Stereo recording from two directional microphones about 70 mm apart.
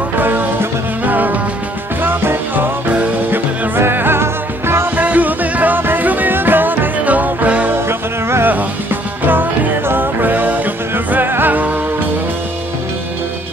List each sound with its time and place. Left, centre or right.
0.2 s music: right
4.9 s music: right
8.3 s music: right